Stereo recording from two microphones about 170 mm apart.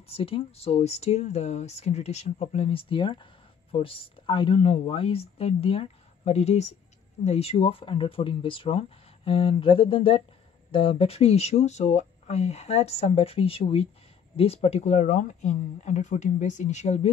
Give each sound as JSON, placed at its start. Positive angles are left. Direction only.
{"t": 0.1, "sound": "speech", "side_deg": 35}